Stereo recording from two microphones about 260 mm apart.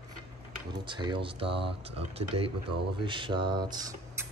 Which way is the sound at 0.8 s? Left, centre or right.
Centre.